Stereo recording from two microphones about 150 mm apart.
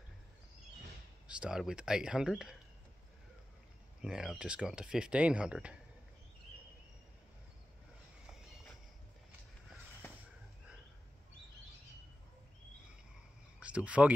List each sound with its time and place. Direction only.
1.2 s speech: 5° right (ahead or behind)
4.0 s speech: 5° right (ahead or behind)
13.6 s speech: 10° right (ahead or behind)